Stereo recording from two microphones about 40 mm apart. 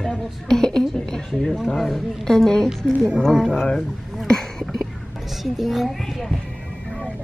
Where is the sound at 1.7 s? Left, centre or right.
Centre.